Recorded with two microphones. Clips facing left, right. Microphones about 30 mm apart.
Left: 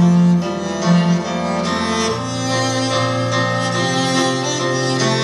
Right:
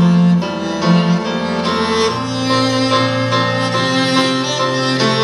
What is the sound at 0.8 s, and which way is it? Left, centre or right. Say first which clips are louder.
Music: right 2 dB; right.